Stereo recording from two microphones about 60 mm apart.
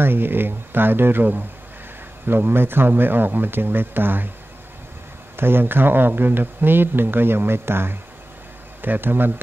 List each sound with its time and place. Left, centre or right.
0.0 s speech: right
5.3 s speech: right